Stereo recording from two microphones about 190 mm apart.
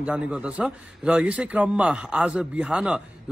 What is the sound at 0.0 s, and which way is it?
A man's voice, 5° right (ahead or behind).